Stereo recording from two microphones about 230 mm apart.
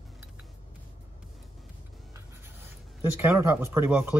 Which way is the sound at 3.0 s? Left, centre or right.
Centre.